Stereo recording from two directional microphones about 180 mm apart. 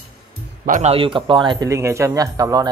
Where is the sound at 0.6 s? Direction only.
40° right (ahead or behind); by 2.6 s 20° right (ahead or behind).